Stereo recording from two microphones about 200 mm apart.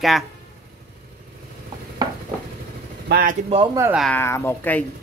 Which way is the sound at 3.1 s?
45° right (ahead or behind).